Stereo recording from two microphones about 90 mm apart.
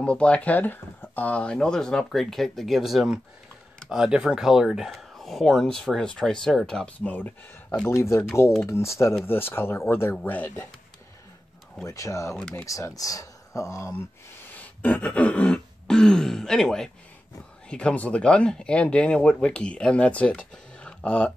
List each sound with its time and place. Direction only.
0.0 s speech: 10° left (ahead or behind)
7.1 s speech: 20° left (ahead or behind)
7.9 s speech: 35° left (ahead or behind)
11.8 s speech: 35° left (ahead or behind)
14.5 s throat clearing: 15° left (ahead or behind)
17.6 s speech: 10° left (ahead or behind)